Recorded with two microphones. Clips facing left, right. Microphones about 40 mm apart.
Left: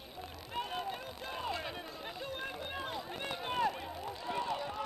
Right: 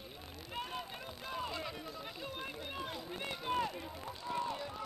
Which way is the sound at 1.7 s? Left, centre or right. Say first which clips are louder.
Left 2 dB; left.